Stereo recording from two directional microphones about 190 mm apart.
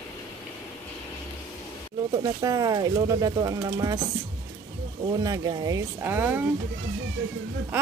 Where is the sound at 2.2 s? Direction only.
20° right (ahead or behind).